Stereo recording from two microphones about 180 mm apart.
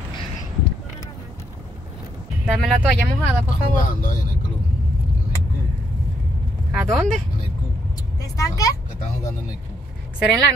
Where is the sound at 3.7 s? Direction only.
50° left (ahead or behind).